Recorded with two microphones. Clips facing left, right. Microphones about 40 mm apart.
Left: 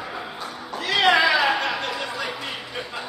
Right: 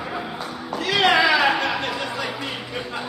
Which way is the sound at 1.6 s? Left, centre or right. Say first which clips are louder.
Right 2 dB; centre.